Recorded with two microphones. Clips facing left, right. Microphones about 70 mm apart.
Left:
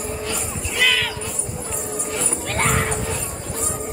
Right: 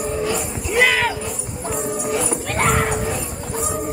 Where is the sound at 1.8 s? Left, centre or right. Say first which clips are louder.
Right 6 dB; centre.